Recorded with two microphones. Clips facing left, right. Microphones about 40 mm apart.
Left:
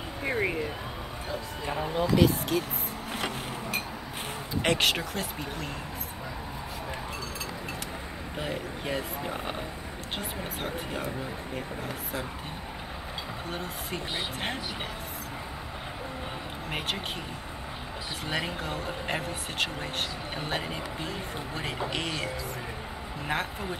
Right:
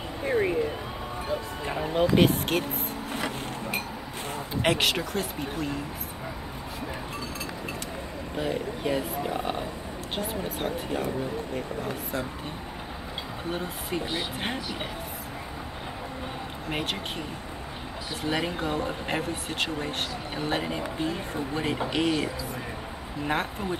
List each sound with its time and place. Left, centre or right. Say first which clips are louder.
0.2 s speech: right 4 dB; left
2.0 s speech: right 3 dB; right
3.1 s vehicle: right 1 dB; centre
4.6 s speech: right 1 dB; centre
8.4 s speech: right 5 dB; centre
13.5 s speech: right 6 dB; centre
16.7 s speech: right 2 dB; centre
18.2 s speech: right 4 dB; centre